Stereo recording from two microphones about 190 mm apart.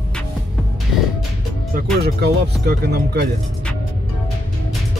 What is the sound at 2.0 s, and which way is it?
Speech, 55° right (ahead or behind).